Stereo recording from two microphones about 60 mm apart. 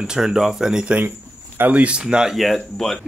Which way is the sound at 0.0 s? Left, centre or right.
Centre.